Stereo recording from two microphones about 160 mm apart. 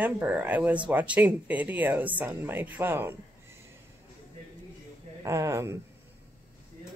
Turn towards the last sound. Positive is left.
turn(degrees=-20)  # may be behind; listen again after turning